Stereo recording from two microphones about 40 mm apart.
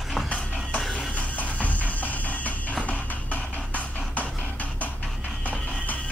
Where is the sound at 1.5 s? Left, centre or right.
Left.